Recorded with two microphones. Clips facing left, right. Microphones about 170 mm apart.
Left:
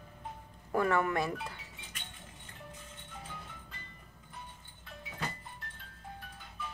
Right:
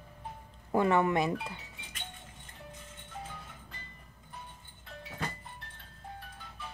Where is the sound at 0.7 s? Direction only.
20° right (ahead or behind).